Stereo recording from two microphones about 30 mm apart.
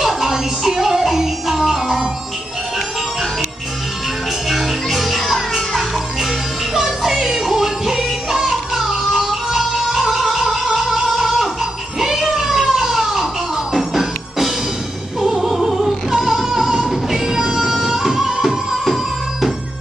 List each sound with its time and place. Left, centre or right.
0.0 s music: centre
4.5 s music: centre
6.7 s music: centre
12.0 s a sound: centre
13.7 s music: centre
15.1 s opera: centre
15.5 s opera: centre
16.1 s music: centre